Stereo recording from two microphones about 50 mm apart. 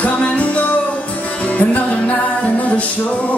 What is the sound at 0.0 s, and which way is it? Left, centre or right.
Music, left.